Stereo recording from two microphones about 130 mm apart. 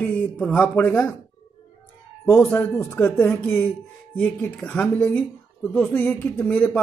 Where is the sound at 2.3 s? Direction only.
20° left (ahead or behind).